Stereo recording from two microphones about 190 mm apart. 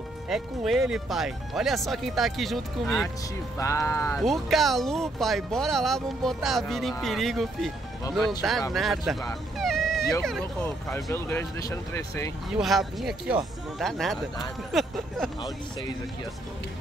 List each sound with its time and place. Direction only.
0.3 s speech: centre (ahead or behind)
3.5 s speech: 15° left (ahead or behind)
4.2 s speech: centre (ahead or behind)
9.6 s a sound: centre (ahead or behind)
10.2 s speech: centre (ahead or behind)
11.1 s speech: 15° left (ahead or behind)
12.5 s speech: centre (ahead or behind)